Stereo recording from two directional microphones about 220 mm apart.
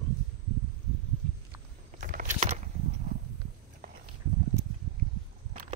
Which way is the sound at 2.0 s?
40° right (ahead or behind).